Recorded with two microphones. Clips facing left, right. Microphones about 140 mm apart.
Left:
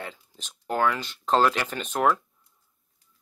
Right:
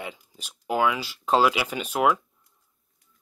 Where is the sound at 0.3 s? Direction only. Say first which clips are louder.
Right 2 dB; 5° right (ahead or behind).